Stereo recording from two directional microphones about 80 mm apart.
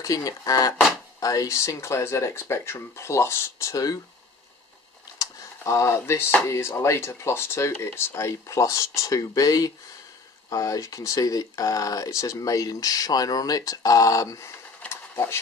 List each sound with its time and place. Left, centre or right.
0.0 s speech: left
5.2 s speech: left
14.9 s a sound: left